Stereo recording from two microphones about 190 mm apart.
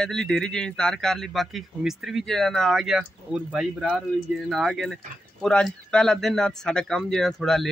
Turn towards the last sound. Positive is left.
turn(degrees=0)  # may be behind; listen again after turning